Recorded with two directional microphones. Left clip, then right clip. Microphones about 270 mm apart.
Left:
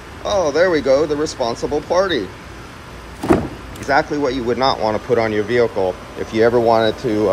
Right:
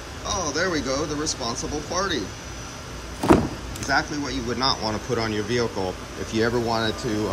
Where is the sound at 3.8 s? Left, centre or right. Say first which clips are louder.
Left 8 dB; centre.